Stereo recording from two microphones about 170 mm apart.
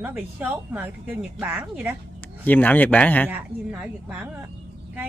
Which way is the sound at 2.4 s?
10° left (ahead or behind).